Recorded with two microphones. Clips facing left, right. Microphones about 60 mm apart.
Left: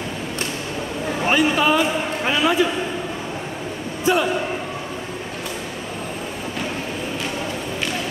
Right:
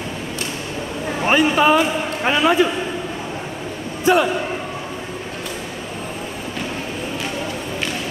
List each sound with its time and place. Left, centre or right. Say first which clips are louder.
1.2 s a man's voice: right 3 dB; right
4.0 s a man's voice: right 3 dB; right